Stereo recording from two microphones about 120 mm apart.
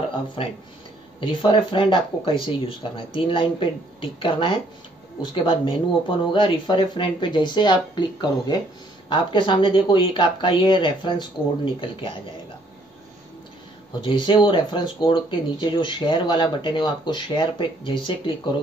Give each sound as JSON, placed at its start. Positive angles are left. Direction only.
{"t": 0.4, "sound": "speech", "side_deg": 50}
{"t": 14.0, "sound": "speech", "side_deg": 45}